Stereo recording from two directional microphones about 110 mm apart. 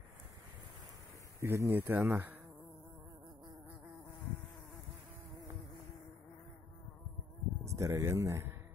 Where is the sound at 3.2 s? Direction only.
40° right (ahead or behind).